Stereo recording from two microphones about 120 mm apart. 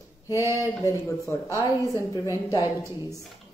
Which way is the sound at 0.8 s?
25° left (ahead or behind).